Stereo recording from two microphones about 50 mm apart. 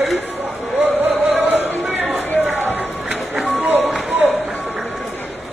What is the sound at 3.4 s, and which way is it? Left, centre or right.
Run, right.